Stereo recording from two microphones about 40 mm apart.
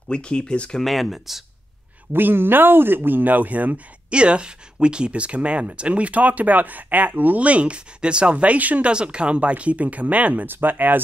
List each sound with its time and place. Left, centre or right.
0.1 s speech: left
0.8 s speech: centre
2.1 s speech: right
4.1 s speech: right
8.9 s speech: right
10.5 s speech: right